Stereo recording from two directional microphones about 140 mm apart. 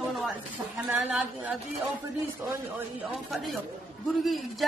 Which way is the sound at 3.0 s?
Centre (ahead or behind).